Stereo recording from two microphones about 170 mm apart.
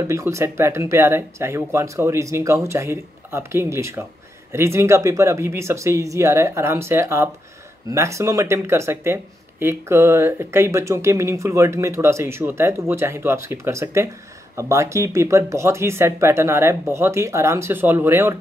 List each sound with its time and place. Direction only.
0.0 s speech: 15° right (ahead or behind)